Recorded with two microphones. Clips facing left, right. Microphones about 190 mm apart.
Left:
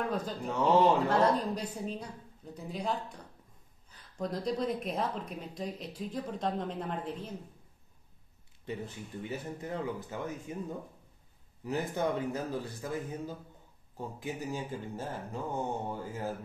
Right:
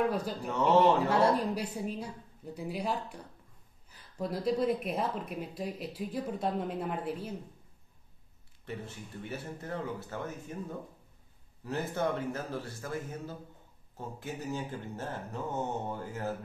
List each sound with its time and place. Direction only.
0.1 s speech: 10° right (ahead or behind)
0.5 s speech: 10° left (ahead or behind)
0.9 s speech: 10° right (ahead or behind)
8.6 s speech: 15° left (ahead or behind)
11.6 s speech: 15° left (ahead or behind)